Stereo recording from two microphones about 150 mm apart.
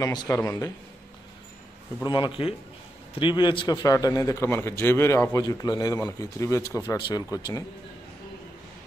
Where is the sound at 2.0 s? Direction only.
30° left (ahead or behind).